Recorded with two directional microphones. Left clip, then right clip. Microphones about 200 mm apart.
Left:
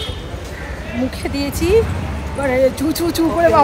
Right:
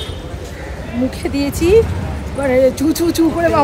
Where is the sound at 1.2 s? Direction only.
15° right (ahead or behind).